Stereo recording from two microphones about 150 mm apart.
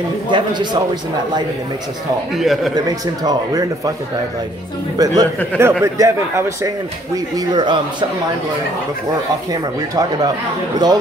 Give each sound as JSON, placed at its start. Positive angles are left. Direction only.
{"t": 0.3, "sound": "speech", "side_deg": -30}
{"t": 2.3, "sound": "a man's voice", "side_deg": 0}
{"t": 3.3, "sound": "speech", "side_deg": -25}
{"t": 4.9, "sound": "a man's voice", "side_deg": -25}
{"t": 9.5, "sound": "speech", "side_deg": -25}